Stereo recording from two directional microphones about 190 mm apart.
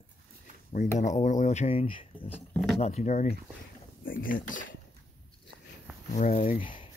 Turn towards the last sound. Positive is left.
turn(degrees=40)  # may be behind; listen again after turning